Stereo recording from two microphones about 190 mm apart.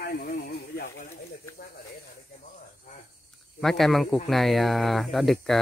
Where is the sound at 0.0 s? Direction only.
55° left (ahead or behind).